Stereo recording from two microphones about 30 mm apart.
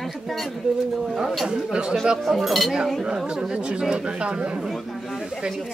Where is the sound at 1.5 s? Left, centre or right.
Right.